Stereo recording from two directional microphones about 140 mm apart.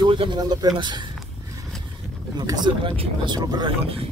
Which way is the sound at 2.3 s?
30° right (ahead or behind).